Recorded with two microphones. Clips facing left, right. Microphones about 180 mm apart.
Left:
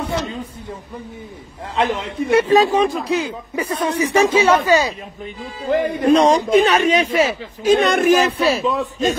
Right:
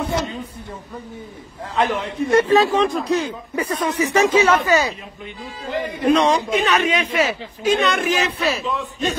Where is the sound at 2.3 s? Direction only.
10° left (ahead or behind).